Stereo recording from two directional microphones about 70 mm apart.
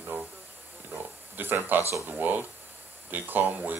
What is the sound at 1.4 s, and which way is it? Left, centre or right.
Speech, right.